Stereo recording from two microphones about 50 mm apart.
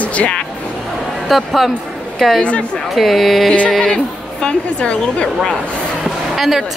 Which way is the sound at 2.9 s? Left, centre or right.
Centre.